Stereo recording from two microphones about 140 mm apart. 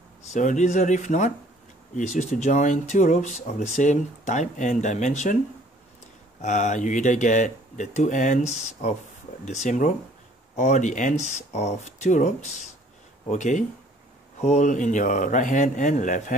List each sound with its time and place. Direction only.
0.3 s speech: 60° left (ahead or behind)
6.4 s speech: 60° left (ahead or behind)